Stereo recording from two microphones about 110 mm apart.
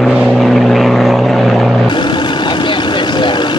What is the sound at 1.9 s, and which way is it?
Vehicle, 45° left (ahead or behind).